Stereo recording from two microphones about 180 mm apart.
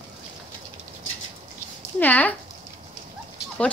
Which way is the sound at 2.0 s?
10° left (ahead or behind).